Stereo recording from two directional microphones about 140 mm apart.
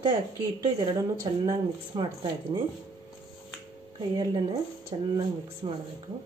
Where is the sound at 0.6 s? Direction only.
25° right (ahead or behind).